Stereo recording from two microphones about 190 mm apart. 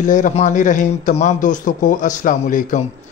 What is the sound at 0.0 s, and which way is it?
A man's voice, 40° left (ahead or behind).